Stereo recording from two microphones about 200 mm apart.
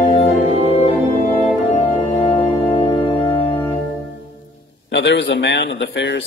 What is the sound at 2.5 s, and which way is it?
Organ, 25° left (ahead or behind).